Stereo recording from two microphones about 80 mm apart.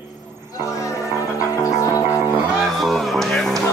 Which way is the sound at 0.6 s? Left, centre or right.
Left.